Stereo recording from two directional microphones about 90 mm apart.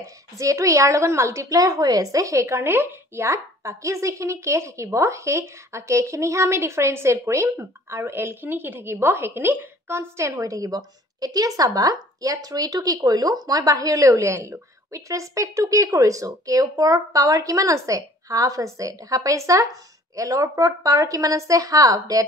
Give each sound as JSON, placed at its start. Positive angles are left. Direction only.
{"t": 0.0, "sound": "a woman's voice", "side_deg": -35}